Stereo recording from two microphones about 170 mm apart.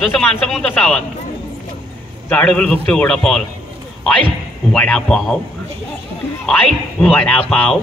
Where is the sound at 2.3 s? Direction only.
5° left (ahead or behind).